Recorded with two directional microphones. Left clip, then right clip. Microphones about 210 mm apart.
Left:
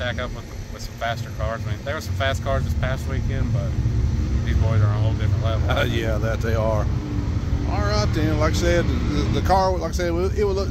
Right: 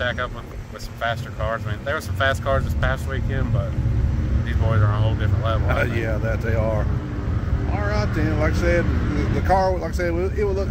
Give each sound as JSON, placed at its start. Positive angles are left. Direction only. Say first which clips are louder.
{"t": 0.0, "sound": "speech", "louder": "right 3 dB", "side_deg": -10}
{"t": 4.5, "sound": "speech", "louder": "right 3 dB", "side_deg": -5}
{"t": 5.7, "sound": "speech", "louder": "left 3 dB", "side_deg": 15}